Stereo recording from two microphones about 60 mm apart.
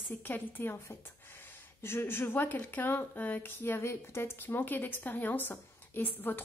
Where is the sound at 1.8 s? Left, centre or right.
Left.